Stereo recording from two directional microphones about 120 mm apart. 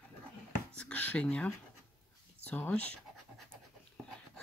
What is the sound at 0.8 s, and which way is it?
Speech, 10° left (ahead or behind).